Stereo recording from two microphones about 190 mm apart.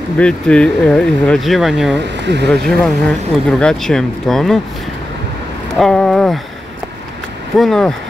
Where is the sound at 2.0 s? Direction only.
65° right (ahead or behind).